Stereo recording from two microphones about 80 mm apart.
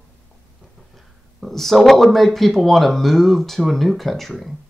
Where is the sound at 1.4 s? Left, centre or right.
Centre.